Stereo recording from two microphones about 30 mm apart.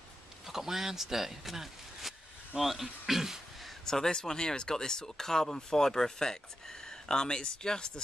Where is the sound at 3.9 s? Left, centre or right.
Left.